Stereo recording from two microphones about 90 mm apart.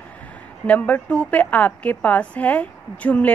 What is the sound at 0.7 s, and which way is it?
A woman's voice, 15° left (ahead or behind).